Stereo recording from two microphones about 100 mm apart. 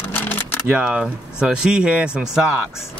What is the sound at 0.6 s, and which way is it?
Speech, 10° right (ahead or behind).